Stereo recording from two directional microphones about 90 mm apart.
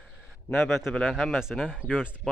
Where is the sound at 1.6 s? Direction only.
5° right (ahead or behind).